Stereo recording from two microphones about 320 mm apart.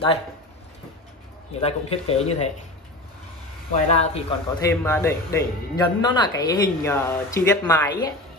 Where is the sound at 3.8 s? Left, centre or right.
Left.